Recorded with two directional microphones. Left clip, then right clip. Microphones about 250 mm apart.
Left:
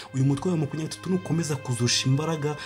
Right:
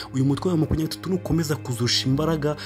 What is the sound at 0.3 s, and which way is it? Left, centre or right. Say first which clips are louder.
Speech: right 4 dB; centre.